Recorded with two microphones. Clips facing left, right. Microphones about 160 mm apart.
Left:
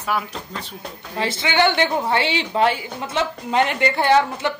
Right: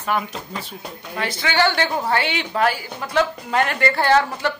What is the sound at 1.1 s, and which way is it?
A woman's voice, 25° left (ahead or behind).